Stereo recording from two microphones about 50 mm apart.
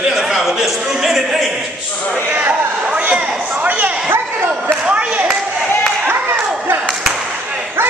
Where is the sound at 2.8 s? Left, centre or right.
Right.